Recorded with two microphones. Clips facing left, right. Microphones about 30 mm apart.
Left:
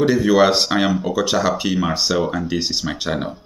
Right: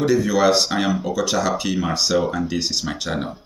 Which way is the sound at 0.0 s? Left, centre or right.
Left.